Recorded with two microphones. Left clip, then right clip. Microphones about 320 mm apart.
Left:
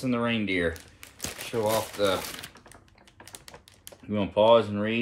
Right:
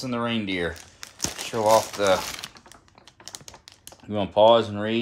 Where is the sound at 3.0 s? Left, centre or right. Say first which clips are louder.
Right 6 dB; centre.